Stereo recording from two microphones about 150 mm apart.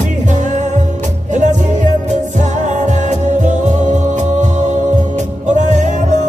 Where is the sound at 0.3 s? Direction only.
55° right (ahead or behind).